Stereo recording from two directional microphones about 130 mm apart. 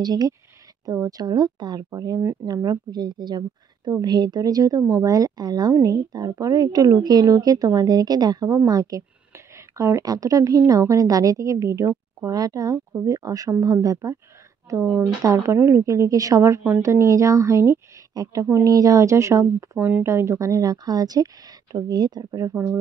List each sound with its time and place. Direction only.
0.0 s speech: 30° right (ahead or behind)
22.5 s speech: 15° right (ahead or behind)